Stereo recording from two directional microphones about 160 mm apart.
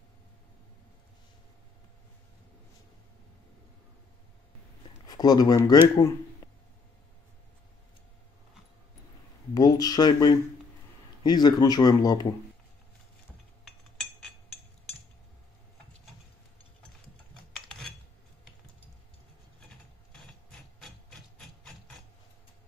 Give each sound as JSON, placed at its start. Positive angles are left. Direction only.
{"t": 5.0, "sound": "speech", "side_deg": 25}
{"t": 5.9, "sound": "a sound", "side_deg": 20}
{"t": 9.5, "sound": "speech", "side_deg": 25}
{"t": 20.8, "sound": "ratchet", "side_deg": 0}